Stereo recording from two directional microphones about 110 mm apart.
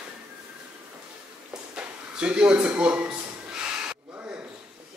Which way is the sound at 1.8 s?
10° right (ahead or behind).